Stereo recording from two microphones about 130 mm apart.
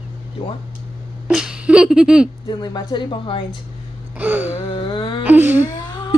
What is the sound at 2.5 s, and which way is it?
Speech, 35° left (ahead or behind).